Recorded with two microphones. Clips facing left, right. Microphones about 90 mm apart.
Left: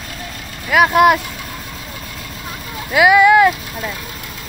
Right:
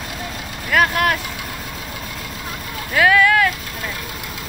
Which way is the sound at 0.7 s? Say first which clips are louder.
Left 6 dB; 10° left (ahead or behind).